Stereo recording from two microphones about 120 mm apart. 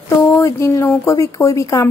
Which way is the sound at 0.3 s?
25° left (ahead or behind).